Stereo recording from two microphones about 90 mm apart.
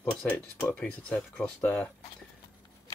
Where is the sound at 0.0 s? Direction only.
15° left (ahead or behind).